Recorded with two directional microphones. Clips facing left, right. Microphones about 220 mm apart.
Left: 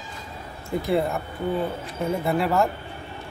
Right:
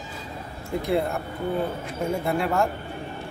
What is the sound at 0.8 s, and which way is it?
Speech, centre (ahead or behind).